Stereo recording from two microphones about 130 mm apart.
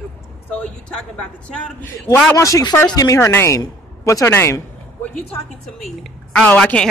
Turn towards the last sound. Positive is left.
turn(degrees=5)  # may be behind; listen again after turning